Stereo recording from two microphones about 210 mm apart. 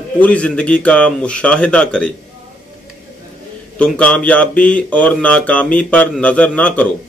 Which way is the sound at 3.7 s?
5° left (ahead or behind).